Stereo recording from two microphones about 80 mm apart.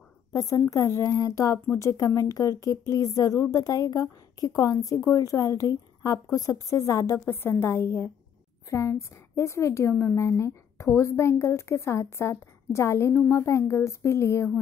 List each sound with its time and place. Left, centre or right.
0.3 s a woman's voice: left